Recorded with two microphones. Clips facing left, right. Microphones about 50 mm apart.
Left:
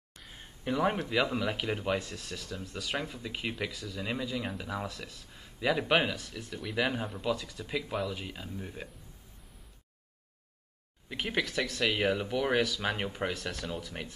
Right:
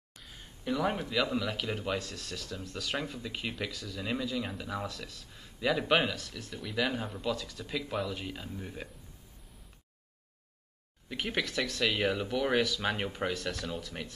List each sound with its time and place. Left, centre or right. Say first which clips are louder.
0.3 s a sound: left 1 dB; left
1.0 s speech: left 1 dB; centre
11.1 s speech: left 1 dB; centre